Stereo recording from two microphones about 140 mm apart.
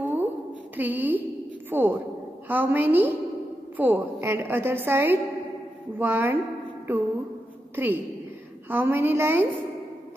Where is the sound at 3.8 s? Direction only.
15° right (ahead or behind).